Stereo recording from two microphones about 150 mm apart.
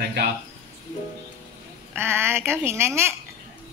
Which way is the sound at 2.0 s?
15° right (ahead or behind).